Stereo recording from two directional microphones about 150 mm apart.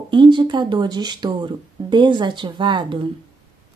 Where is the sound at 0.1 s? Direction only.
30° right (ahead or behind).